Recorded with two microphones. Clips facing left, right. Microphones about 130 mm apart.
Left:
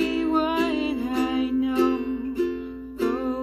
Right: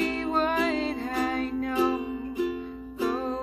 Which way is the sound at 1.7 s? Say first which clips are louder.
Left 4 dB; 10° right (ahead or behind).